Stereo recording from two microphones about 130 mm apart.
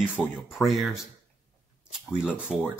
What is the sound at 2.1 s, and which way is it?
Speech, 5° right (ahead or behind).